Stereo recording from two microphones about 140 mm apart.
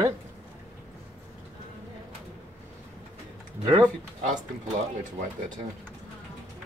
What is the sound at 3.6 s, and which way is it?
Speech, 25° right (ahead or behind).